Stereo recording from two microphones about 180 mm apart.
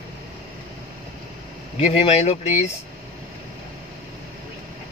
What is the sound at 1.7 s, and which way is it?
Speech, 35° left (ahead or behind).